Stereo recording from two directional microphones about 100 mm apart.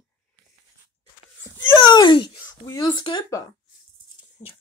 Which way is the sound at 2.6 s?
35° left (ahead or behind).